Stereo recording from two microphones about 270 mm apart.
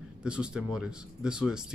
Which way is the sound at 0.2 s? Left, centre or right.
Centre.